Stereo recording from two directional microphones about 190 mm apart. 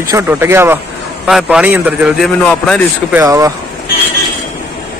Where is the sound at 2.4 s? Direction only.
5° left (ahead or behind).